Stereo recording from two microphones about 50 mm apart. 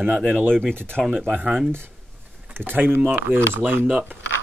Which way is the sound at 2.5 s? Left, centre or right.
Right.